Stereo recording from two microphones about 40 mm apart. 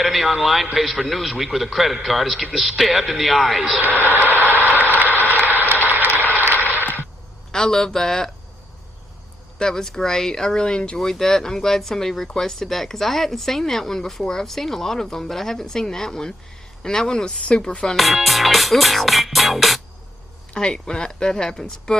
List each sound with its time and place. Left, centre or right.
0.0 s music: centre
3.8 s speech: right
5.2 s a sound: right
5.9 s vehicle: right
7.5 s speech: centre
9.6 s speech: centre
17.9 s music: centre
20.5 s speech: centre